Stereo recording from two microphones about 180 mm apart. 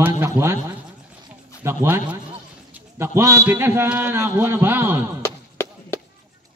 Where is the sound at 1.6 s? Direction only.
10° right (ahead or behind).